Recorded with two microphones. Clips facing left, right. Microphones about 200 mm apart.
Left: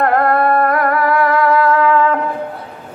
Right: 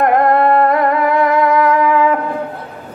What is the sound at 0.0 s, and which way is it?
Music, 20° right (ahead or behind).